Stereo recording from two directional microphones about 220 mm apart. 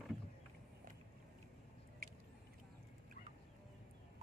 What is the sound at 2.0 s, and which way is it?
Vehicle, 40° right (ahead or behind).